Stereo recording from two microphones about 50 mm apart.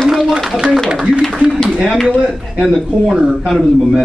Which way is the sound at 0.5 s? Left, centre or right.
Centre.